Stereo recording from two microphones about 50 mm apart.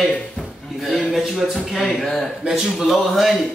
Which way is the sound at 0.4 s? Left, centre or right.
Centre.